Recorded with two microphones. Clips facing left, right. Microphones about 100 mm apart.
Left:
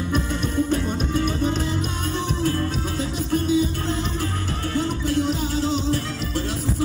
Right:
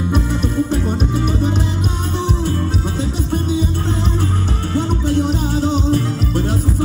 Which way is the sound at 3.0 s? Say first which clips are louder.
Right 1 dB; 25° right (ahead or behind).